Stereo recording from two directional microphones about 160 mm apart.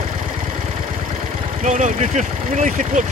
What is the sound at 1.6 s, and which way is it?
Speech, 50° right (ahead or behind).